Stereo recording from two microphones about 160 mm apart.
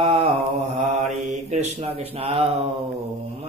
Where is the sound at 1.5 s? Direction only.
45° right (ahead or behind).